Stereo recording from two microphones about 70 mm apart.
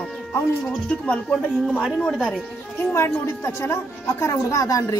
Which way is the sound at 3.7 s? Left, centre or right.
Left.